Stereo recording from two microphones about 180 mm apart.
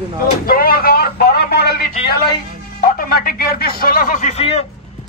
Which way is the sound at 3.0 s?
55° left (ahead or behind).